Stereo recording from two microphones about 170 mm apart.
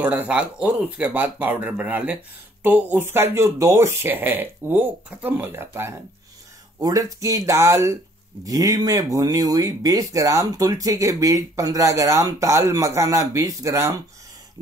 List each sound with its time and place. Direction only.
0.0 s speech: 10° right (ahead or behind)